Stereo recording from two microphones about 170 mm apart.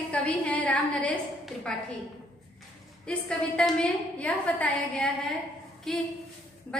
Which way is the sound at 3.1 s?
5° left (ahead or behind).